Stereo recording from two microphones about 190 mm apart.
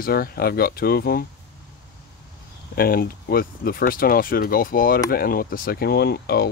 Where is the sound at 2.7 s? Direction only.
50° left (ahead or behind).